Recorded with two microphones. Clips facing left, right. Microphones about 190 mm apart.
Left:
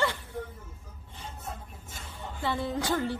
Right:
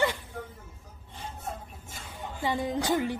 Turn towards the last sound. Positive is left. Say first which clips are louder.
# right 2 dB
turn(degrees=-15)  # may be behind; listen again after turning